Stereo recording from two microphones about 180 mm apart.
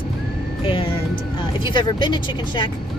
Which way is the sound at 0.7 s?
30° left (ahead or behind).